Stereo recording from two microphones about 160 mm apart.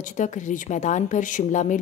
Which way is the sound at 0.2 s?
50° left (ahead or behind).